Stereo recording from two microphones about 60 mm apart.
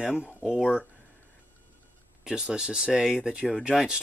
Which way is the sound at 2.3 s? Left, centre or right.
Centre.